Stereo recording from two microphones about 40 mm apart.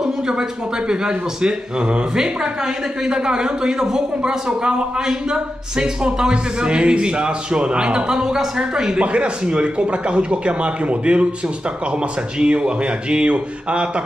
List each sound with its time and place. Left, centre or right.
0.0 s a man's voice: centre
12.4 s speech: right